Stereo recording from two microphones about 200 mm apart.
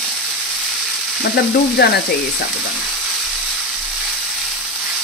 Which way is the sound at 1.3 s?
55° left (ahead or behind).